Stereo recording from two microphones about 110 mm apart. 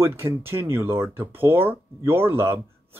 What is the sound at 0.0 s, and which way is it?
Speech, 25° right (ahead or behind).